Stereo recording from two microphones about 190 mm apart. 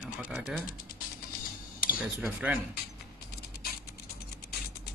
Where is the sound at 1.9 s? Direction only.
5° right (ahead or behind).